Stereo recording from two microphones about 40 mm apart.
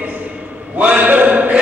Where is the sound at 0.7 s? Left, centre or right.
Right.